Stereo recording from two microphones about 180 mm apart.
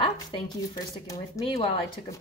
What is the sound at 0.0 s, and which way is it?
A woman's voice, 25° left (ahead or behind).